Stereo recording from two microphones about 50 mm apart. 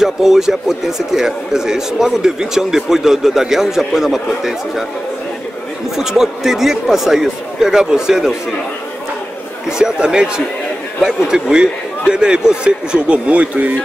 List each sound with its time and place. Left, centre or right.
0.0 s speech: centre
5.9 s speech: centre
9.7 s speech: centre; by 13.7 s right